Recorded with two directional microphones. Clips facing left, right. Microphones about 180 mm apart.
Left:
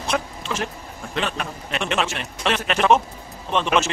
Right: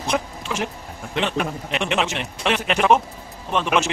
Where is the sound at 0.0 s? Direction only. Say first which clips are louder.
Right 1 dB; 15° right (ahead or behind).